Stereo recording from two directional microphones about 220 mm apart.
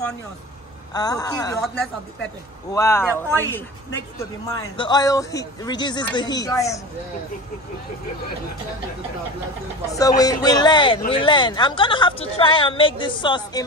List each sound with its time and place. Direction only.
0.9 s speech: 15° left (ahead or behind)
2.7 s speech: 10° left (ahead or behind)
9.8 s a woman's voice: 15° left (ahead or behind)